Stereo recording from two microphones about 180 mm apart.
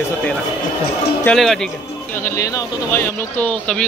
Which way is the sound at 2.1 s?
15° left (ahead or behind).